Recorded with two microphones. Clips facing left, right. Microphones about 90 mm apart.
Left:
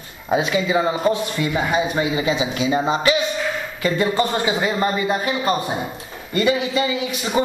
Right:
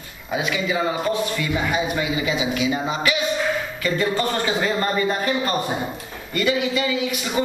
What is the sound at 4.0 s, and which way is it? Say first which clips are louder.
A woman's voice: left 2 dB; 15° left (ahead or behind).